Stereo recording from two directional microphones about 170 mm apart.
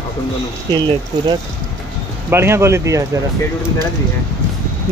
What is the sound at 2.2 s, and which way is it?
Speech, 15° right (ahead or behind).